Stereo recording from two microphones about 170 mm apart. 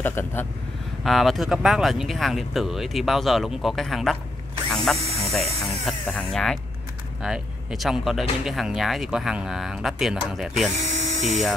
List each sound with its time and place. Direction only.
0.0 s speech: 10° left (ahead or behind)
1.0 s speech: centre (ahead or behind)
10.8 s electric toothbrush: 45° right (ahead or behind)